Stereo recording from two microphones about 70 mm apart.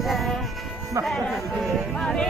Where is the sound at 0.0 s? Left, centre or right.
Centre.